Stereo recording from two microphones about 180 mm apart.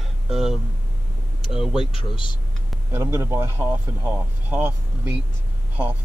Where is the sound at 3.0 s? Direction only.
15° right (ahead or behind).